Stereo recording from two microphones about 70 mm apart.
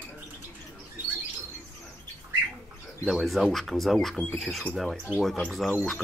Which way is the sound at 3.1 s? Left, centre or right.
Centre.